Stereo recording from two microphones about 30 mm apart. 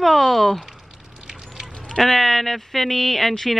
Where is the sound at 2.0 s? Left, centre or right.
Centre.